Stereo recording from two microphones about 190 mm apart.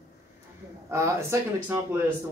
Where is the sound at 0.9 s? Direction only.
15° right (ahead or behind).